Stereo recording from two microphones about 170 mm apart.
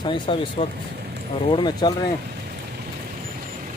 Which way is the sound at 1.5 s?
25° left (ahead or behind).